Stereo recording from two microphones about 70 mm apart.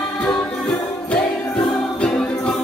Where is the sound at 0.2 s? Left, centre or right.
Centre.